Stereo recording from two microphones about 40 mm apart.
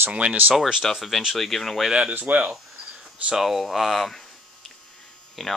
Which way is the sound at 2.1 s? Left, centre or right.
Right.